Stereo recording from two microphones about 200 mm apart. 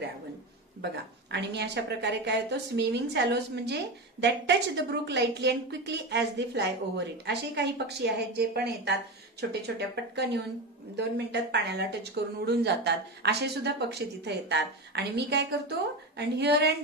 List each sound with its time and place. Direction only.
1.3 s a woman's voice: 60° right (ahead or behind)